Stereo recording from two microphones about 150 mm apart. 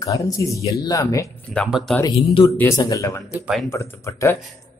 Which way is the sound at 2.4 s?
20° left (ahead or behind).